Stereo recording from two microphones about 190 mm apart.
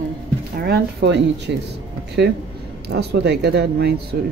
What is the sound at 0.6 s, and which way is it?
Speech, 60° right (ahead or behind).